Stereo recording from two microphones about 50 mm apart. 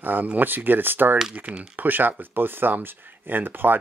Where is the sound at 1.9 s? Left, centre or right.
Right.